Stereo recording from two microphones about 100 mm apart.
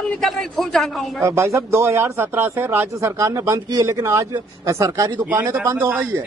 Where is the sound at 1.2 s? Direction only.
30° right (ahead or behind).